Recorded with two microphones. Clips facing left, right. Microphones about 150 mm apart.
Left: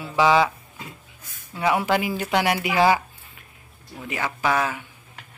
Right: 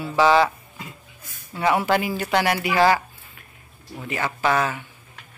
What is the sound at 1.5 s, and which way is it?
A woman's voice, 5° left (ahead or behind).